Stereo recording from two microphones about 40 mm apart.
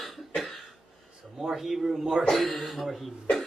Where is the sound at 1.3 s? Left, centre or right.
Centre.